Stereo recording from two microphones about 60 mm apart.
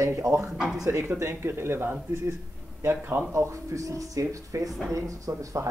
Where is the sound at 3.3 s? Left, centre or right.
Right.